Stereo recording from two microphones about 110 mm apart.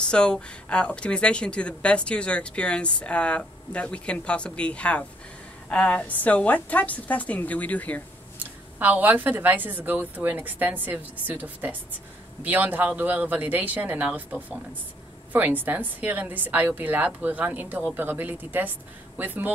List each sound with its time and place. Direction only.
0.1 s speech: 10° left (ahead or behind)
8.4 s a woman's voice: 15° right (ahead or behind)